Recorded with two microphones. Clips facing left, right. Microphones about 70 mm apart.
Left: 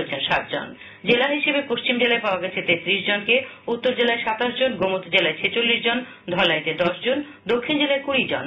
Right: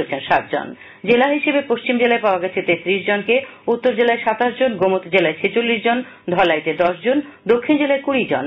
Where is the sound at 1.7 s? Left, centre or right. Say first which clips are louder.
Right 5 dB; right.